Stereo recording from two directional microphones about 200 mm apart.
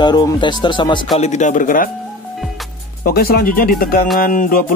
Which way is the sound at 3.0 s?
50° left (ahead or behind).